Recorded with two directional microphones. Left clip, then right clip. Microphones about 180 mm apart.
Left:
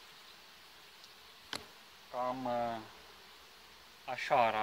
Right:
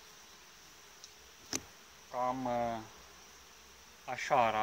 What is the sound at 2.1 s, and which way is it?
Speech, 15° left (ahead or behind).